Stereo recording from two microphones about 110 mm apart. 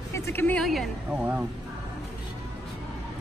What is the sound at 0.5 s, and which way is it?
Speech, centre (ahead or behind).